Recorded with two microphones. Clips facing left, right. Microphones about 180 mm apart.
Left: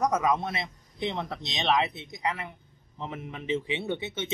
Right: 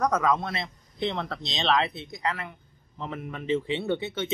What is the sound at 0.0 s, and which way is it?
A man's voice, 20° left (ahead or behind).